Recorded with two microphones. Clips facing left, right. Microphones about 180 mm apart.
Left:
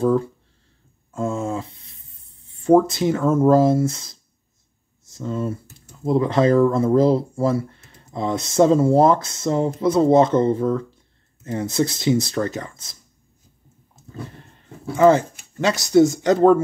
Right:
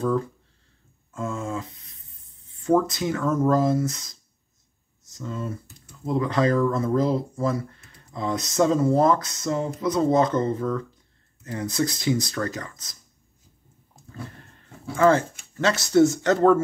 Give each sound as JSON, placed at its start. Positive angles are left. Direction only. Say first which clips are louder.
{"t": 1.1, "sound": "a sound", "louder": "left 5 dB", "side_deg": 30}
{"t": 2.4, "sound": "speech", "louder": "left 6 dB", "side_deg": 30}
{"t": 15.0, "sound": "speech", "louder": "left 4 dB", "side_deg": 15}